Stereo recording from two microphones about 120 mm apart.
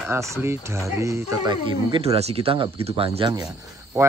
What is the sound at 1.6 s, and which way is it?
Speech, 50° right (ahead or behind).